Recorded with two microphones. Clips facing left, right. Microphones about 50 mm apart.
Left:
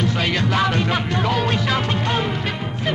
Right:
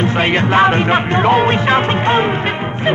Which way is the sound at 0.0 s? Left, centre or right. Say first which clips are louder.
Right 6 dB; right.